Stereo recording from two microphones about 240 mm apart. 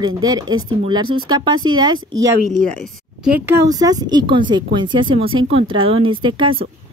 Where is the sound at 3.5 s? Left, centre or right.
Centre.